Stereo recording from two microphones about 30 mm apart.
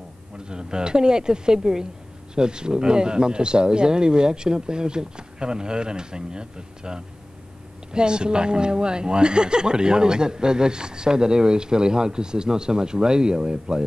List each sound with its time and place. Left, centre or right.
0.5 s speech: right